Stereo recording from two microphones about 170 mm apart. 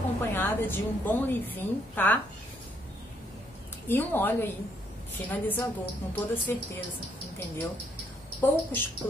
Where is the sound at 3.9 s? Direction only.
10° left (ahead or behind).